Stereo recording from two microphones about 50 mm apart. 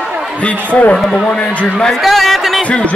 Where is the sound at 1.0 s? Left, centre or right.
Centre.